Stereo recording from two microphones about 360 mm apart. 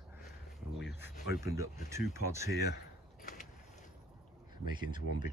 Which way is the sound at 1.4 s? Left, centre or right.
Centre.